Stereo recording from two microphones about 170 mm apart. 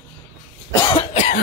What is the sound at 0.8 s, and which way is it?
Cough, 25° left (ahead or behind).